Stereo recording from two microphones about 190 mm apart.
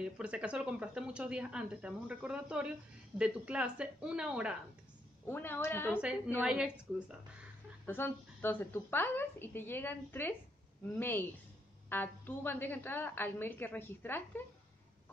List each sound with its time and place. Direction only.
0.0 s speech: 5° right (ahead or behind)
5.3 s a woman's voice: 10° left (ahead or behind)
6.4 s speech: 5° right (ahead or behind)
7.8 s a woman's voice: 10° left (ahead or behind)